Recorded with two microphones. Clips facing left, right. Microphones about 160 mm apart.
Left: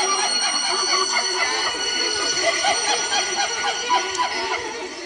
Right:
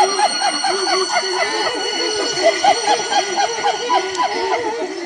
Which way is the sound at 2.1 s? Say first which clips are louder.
Right 9 dB; 45° right (ahead or behind).